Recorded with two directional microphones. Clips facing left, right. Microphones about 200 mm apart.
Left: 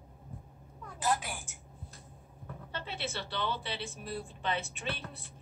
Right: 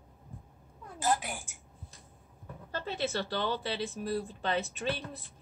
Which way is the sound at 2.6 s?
40° right (ahead or behind).